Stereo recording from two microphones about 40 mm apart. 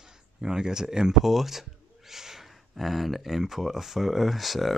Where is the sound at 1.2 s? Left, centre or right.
Centre.